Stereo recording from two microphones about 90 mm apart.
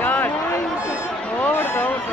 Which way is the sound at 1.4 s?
25° left (ahead or behind).